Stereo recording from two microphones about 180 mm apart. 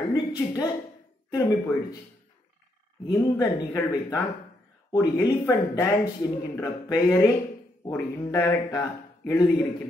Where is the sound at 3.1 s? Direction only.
20° left (ahead or behind).